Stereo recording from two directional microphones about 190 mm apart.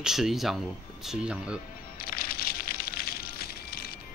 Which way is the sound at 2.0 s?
50° left (ahead or behind).